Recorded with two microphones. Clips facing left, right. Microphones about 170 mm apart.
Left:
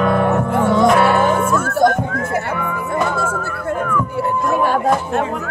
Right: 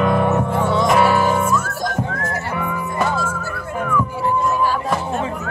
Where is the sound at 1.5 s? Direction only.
55° left (ahead or behind).